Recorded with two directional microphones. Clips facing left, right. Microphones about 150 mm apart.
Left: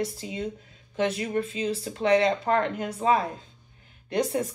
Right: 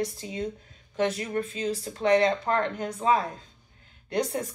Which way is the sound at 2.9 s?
25° left (ahead or behind).